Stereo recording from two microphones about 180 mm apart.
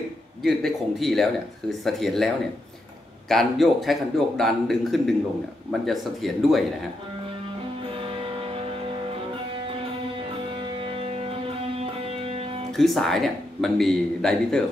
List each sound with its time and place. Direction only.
0.4 s speech: centre (ahead or behind)
8.0 s music: 30° right (ahead or behind)
10.6 s music: 30° right (ahead or behind)
12.7 s speech: centre (ahead or behind)